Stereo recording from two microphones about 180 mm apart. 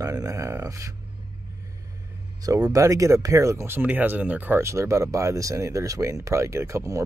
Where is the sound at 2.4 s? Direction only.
20° right (ahead or behind).